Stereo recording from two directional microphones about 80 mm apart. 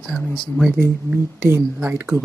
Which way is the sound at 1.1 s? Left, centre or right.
Right.